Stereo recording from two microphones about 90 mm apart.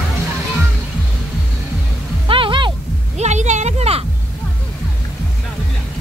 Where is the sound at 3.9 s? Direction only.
90° right.